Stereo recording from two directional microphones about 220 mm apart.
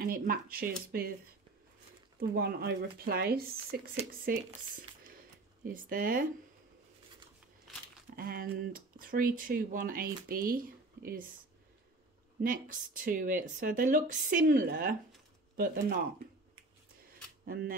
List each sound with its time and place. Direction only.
0.0 s speech: 40° right (ahead or behind)
2.1 s speech: 45° right (ahead or behind)
8.2 s speech: 40° right (ahead or behind)
12.4 s speech: 40° right (ahead or behind)